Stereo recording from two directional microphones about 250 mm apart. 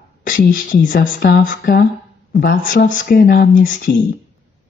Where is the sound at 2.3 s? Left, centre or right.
Left.